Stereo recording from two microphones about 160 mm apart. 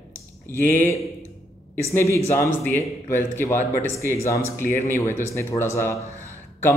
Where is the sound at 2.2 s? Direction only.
15° left (ahead or behind).